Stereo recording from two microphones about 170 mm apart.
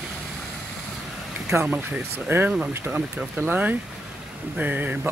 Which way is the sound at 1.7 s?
10° right (ahead or behind).